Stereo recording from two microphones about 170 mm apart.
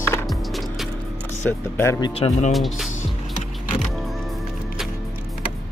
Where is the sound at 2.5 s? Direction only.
Centre (ahead or behind).